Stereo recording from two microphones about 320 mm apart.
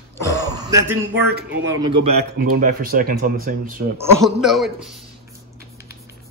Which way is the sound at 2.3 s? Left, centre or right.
Right.